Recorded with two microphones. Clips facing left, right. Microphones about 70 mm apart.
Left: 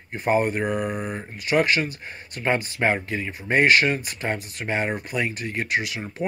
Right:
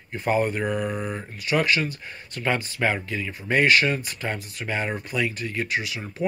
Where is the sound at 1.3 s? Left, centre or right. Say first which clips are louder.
Left 2 dB; left.